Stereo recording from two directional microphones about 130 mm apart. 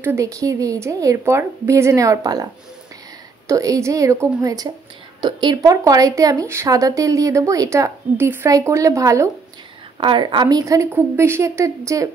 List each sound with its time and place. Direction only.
0.0 s speech: 20° right (ahead or behind)
3.4 s speech: 25° right (ahead or behind)
9.9 s a woman's voice: 40° right (ahead or behind)